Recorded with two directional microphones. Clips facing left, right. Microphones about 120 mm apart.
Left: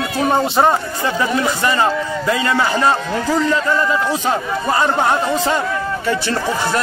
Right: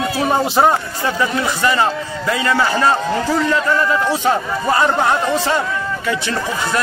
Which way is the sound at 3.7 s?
10° left (ahead or behind).